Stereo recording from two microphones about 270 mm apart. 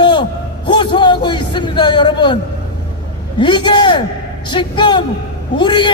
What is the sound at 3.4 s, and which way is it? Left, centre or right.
A man's voice, centre.